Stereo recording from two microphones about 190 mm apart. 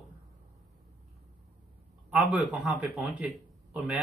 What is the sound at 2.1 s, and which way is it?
Speech, 10° right (ahead or behind).